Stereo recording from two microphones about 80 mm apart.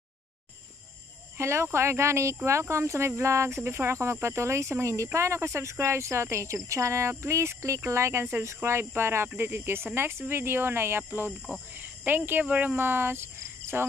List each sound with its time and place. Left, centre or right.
1.4 s speech: right